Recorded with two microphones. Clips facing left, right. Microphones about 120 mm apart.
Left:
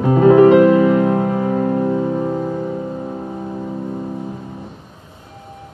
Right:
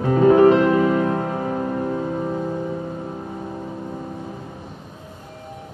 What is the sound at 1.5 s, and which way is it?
Music, 50° left (ahead or behind).